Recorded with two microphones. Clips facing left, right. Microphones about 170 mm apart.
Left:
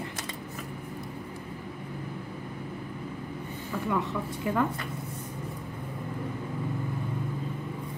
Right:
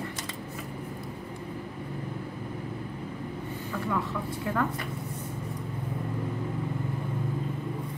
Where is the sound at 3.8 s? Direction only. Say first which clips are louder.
Left 2 dB; 15° left (ahead or behind).